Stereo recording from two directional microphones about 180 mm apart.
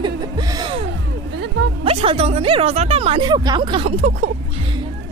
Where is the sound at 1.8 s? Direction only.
30° right (ahead or behind).